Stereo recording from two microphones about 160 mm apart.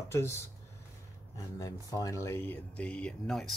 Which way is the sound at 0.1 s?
15° left (ahead or behind).